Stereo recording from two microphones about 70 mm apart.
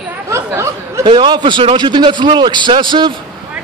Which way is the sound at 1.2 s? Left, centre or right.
Right.